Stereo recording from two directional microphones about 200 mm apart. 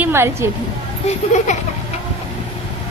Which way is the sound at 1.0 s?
35° left (ahead or behind).